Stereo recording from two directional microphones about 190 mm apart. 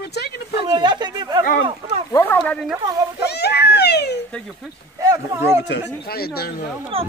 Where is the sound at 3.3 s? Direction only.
60° left (ahead or behind).